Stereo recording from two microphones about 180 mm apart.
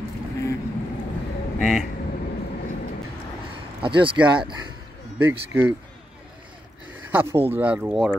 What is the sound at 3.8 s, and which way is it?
Speech, 25° right (ahead or behind).